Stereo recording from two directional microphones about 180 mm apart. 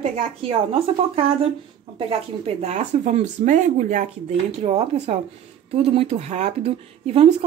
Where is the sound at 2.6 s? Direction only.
40° right (ahead or behind).